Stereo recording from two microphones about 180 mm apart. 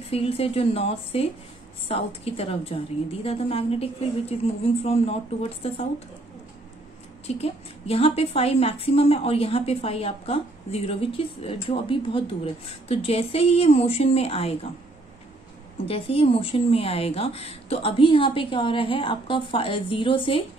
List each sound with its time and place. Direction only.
0.1 s a woman's voice: 35° left (ahead or behind)
7.2 s a woman's voice: 35° left (ahead or behind)
15.8 s a woman's voice: 30° left (ahead or behind)